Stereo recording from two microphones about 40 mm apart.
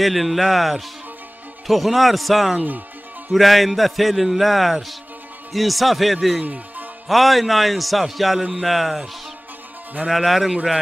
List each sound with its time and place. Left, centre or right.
0.0 s a man's voice: centre
6.4 s music: right
7.1 s a man's voice: centre
8.4 s speech: centre
8.6 s a man's voice: centre
10.0 s a man's voice: centre